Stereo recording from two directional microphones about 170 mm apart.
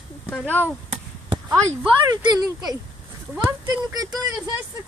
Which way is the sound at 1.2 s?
30° right (ahead or behind).